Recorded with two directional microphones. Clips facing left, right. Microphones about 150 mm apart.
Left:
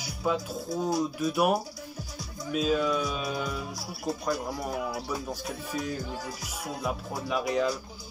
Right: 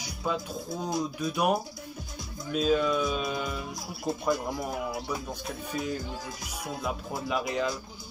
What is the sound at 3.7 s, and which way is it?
Speech, 20° right (ahead or behind).